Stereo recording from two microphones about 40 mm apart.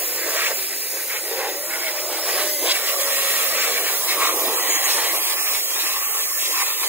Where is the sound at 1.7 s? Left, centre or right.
Right.